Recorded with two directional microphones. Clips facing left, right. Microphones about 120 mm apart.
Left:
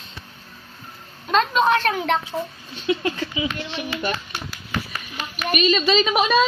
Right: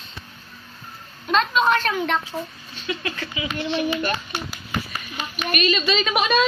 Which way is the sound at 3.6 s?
40° right (ahead or behind).